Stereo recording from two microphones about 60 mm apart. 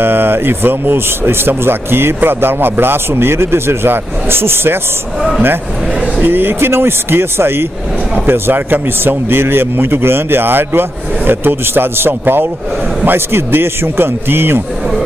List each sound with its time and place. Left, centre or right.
0.0 s speech: right
6.2 s speech: right